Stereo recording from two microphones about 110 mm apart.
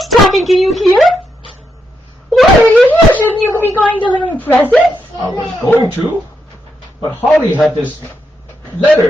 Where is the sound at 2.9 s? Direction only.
15° left (ahead or behind).